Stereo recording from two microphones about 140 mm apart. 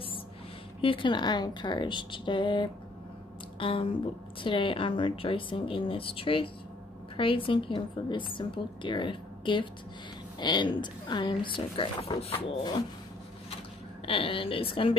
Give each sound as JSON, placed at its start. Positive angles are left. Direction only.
{"t": 0.7, "sound": "speech", "side_deg": 40}
{"t": 14.0, "sound": "speech", "side_deg": 40}